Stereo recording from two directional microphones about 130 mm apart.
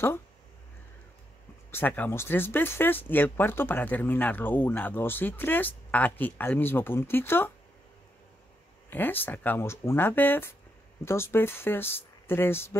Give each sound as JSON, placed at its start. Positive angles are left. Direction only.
{"t": 1.7, "sound": "speech", "side_deg": 15}
{"t": 8.9, "sound": "speech", "side_deg": 15}